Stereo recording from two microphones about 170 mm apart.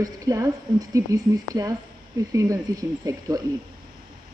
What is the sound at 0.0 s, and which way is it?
A woman's voice, 20° right (ahead or behind).